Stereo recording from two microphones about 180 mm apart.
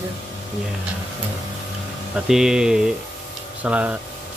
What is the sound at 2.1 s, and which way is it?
Speech, 5° right (ahead or behind).